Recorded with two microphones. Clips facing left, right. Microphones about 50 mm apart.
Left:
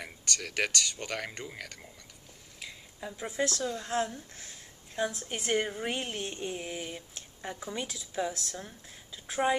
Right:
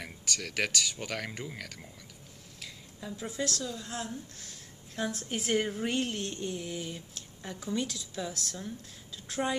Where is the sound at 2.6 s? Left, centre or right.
Centre.